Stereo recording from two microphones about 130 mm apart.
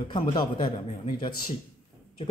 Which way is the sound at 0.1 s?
35° left (ahead or behind).